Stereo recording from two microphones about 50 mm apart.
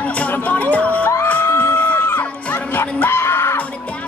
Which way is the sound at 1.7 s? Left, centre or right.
Left.